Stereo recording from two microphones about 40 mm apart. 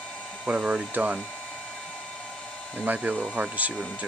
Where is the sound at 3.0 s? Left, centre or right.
Right.